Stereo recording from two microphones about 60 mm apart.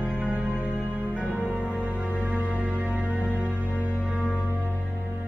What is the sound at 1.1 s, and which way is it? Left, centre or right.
Music, right.